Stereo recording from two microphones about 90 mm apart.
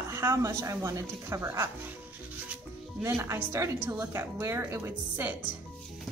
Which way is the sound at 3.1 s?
30° right (ahead or behind).